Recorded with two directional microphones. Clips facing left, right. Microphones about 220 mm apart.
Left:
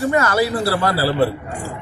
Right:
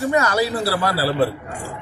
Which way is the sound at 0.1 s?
15° right (ahead or behind).